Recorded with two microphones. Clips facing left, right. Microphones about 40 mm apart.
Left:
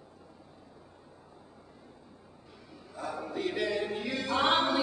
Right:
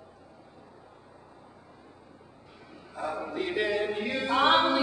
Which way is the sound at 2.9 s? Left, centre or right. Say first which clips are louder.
Right 4 dB; right.